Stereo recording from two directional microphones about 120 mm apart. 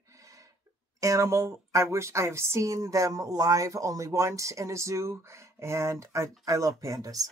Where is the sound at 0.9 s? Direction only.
25° right (ahead or behind).